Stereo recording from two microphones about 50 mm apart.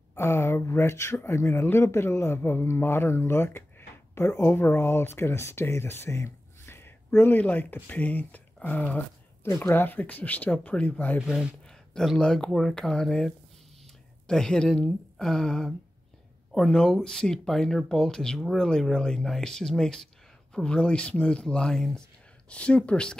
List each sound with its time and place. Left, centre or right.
0.1 s a man's voice: left
7.3 s speech: left
12.2 s a woman's voice: centre
20.5 s speech: left
21.7 s speech: centre
22.5 s speech: left